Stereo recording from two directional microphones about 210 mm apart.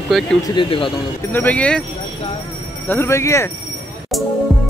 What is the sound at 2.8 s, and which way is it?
Speech, 10° left (ahead or behind).